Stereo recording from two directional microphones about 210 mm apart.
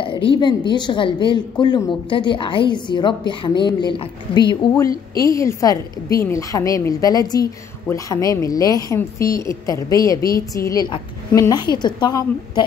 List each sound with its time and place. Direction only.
0.0 s a woman's voice: 25° left (ahead or behind)